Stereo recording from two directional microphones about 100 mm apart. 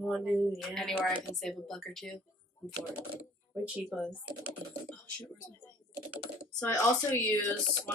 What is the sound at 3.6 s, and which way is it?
Speech, 10° right (ahead or behind).